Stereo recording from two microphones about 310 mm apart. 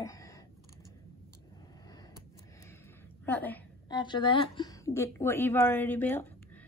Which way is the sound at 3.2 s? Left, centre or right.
Centre.